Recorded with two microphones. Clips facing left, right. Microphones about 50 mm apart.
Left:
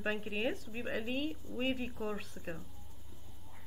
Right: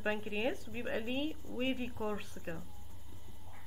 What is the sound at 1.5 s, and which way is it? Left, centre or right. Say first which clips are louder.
Speech: even; right.